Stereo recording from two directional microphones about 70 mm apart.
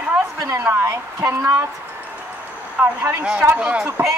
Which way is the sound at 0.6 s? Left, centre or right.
Right.